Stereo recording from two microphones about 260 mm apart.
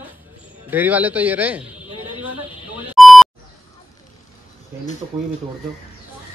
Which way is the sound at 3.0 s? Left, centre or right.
Centre.